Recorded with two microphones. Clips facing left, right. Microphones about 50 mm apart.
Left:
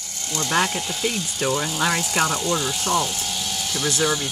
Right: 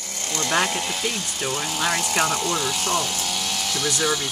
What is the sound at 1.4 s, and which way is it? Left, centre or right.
Speech, left.